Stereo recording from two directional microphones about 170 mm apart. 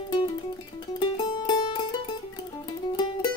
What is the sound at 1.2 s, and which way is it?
Music, 30° left (ahead or behind).